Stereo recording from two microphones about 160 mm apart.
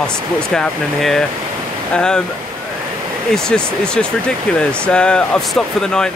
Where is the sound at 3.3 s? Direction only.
5° left (ahead or behind).